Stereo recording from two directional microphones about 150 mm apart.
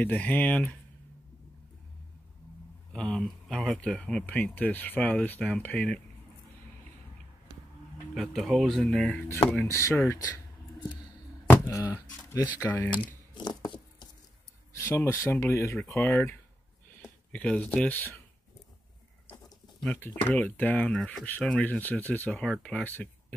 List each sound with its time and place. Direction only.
0.0 s speech: 10° left (ahead or behind)
2.9 s speech: 5° left (ahead or behind)
8.1 s speech: centre (ahead or behind); by 10.4 s 15° left (ahead or behind)
11.4 s a sound: 15° left (ahead or behind)
12.3 s speech: 20° left (ahead or behind)
13.3 s a sound: 30° left (ahead or behind)
14.7 s speech: 15° left (ahead or behind)
19.8 s speech: 10° left (ahead or behind)